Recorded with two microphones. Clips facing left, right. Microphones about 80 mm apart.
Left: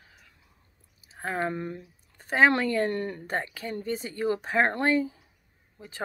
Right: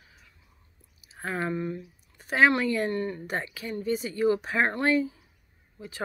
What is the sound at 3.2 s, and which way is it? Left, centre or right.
A woman's voice, left.